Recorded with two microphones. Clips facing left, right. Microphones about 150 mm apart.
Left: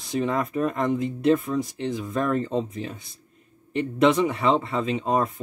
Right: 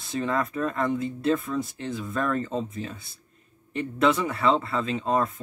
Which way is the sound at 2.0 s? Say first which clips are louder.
Left 2 dB; 10° left (ahead or behind).